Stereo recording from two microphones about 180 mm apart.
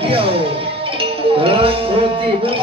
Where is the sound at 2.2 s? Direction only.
30° right (ahead or behind).